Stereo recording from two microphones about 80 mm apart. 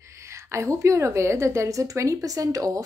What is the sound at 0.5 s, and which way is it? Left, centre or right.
A woman's voice, right.